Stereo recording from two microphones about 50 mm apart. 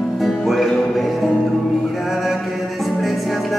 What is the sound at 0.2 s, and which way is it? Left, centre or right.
Music, centre.